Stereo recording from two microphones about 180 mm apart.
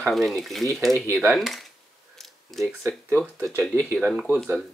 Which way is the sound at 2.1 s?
Centre (ahead or behind).